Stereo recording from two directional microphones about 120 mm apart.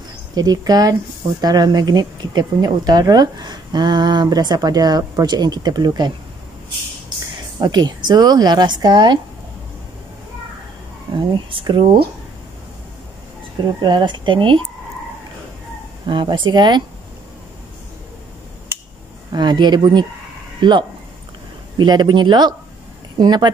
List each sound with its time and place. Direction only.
0.3 s speech: 35° right (ahead or behind)
7.5 s speech: 35° right (ahead or behind)
11.3 s speech: 40° right (ahead or behind)
13.8 s speech: 40° right (ahead or behind)
16.1 s speech: 40° right (ahead or behind)
19.3 s speech: 35° right (ahead or behind)